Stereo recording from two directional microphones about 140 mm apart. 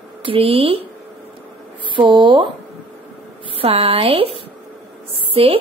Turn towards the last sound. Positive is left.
turn(degrees=-40)  # may be behind; listen again after turning